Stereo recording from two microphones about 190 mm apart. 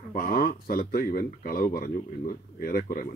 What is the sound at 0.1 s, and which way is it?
Speech, 50° left (ahead or behind).